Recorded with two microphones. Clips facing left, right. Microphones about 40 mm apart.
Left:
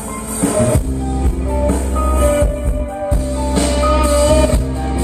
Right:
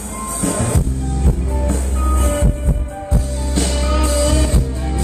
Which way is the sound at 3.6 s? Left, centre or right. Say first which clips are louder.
Left 5 dB; centre.